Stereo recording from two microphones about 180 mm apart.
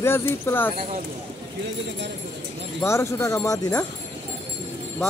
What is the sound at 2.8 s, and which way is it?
Music, 15° left (ahead or behind).